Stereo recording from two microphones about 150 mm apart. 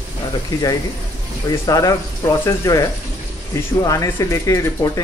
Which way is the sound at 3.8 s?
20° left (ahead or behind).